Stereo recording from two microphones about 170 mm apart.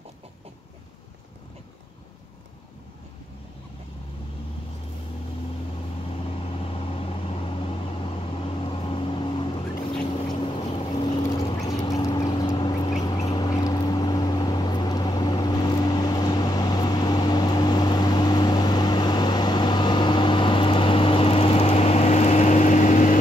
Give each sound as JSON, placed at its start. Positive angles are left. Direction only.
{"t": 6.6, "sound": "vehicle", "side_deg": 35}
{"t": 11.6, "sound": "duck", "side_deg": 20}
{"t": 13.3, "sound": "vehicle", "side_deg": 25}